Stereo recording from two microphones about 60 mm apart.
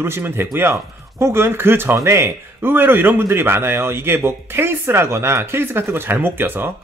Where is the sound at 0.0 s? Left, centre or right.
Right.